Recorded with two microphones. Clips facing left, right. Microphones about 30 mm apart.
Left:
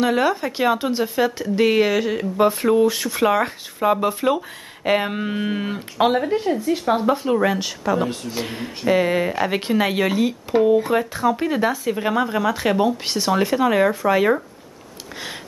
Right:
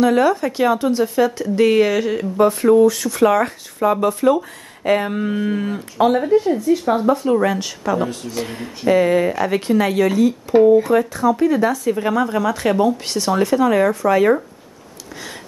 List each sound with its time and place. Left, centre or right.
0.0 s speech: centre
2.4 s speech: centre
8.3 s speech: centre